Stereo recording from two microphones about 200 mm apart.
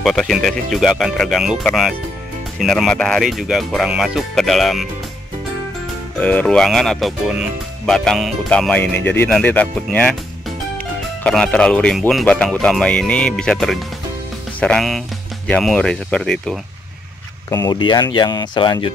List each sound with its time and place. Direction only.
0.0 s speech: centre (ahead or behind)
6.1 s speech: 5° left (ahead or behind)
11.2 s speech: 5° left (ahead or behind)
17.5 s speech: 20° left (ahead or behind)